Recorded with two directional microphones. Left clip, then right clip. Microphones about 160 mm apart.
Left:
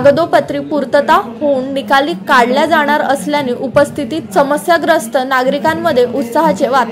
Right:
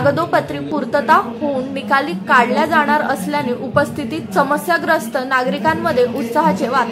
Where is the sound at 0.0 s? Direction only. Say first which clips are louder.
Left 6 dB; 25° left (ahead or behind).